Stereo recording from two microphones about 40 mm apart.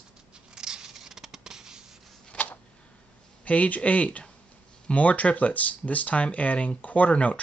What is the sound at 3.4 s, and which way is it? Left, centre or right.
Speech, left.